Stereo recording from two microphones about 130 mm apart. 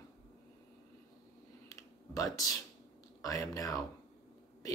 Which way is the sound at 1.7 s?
25° left (ahead or behind).